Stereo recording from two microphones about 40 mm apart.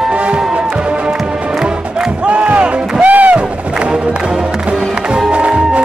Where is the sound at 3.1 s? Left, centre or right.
Right.